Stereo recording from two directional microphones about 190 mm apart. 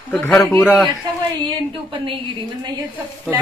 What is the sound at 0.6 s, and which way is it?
Speech, centre (ahead or behind).